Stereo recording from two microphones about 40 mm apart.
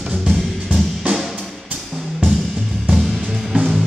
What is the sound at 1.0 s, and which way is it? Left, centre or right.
Music, right.